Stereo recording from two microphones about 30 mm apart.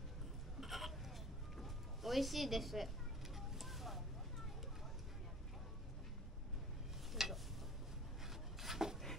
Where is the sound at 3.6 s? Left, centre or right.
Centre.